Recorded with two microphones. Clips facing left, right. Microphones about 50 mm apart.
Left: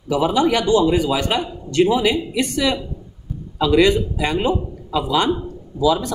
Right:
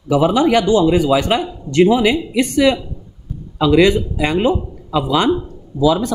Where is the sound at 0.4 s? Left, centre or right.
Right.